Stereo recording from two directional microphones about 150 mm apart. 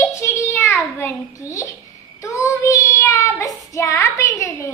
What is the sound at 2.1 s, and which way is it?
Child singing, 20° left (ahead or behind).